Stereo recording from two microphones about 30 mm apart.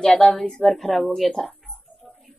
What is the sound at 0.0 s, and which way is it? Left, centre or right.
Speech, left.